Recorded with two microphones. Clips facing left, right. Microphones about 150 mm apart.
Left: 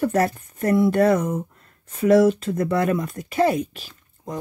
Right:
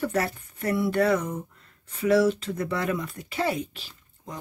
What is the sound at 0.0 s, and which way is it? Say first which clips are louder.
Speech: left 6 dB; 45° left (ahead or behind).